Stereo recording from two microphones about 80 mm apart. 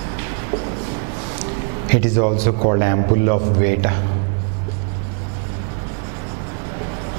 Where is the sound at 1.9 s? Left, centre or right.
Centre.